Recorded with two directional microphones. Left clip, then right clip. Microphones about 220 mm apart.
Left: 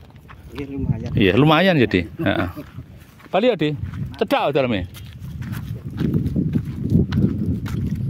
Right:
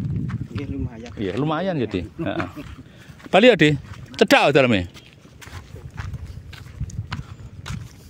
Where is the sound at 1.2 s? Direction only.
40° left (ahead or behind).